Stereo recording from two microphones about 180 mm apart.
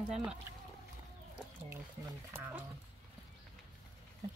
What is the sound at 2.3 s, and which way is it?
Speech, 15° right (ahead or behind).